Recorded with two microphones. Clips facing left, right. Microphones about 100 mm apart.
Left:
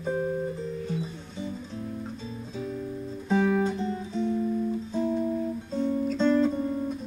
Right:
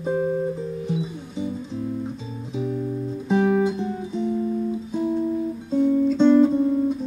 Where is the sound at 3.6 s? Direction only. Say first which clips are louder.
Right 4 dB; 15° right (ahead or behind).